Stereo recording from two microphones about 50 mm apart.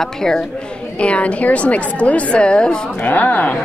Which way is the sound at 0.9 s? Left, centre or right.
Left.